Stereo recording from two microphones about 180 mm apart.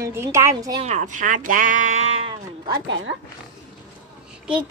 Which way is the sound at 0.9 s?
45° right (ahead or behind).